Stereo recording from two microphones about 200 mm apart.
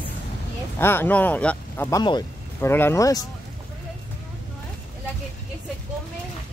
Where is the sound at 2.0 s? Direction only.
20° left (ahead or behind).